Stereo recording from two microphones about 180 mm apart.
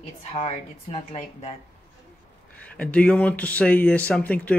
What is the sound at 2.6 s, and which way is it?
Speech, 5° left (ahead or behind).